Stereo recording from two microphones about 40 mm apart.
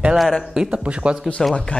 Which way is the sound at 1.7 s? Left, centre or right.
Left.